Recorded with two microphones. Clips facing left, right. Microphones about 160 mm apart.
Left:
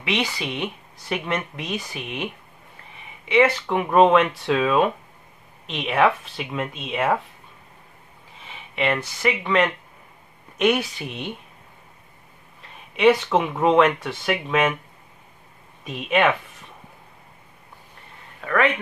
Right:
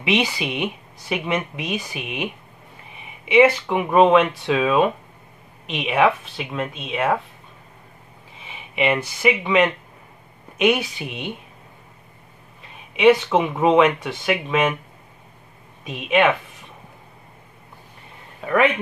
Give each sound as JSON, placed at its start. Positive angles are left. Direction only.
{"t": 0.0, "sound": "speech", "side_deg": -15}
{"t": 8.5, "sound": "speech", "side_deg": -10}
{"t": 12.9, "sound": "speech", "side_deg": -5}
{"t": 15.8, "sound": "speech", "side_deg": 0}
{"t": 18.4, "sound": "speech", "side_deg": -15}